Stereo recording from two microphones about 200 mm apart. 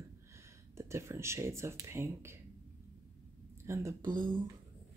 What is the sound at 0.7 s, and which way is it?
Speech, 15° right (ahead or behind).